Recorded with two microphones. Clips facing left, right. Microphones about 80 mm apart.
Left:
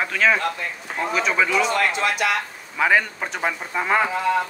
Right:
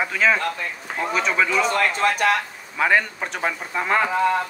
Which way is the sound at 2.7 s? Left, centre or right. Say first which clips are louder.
Even; centre.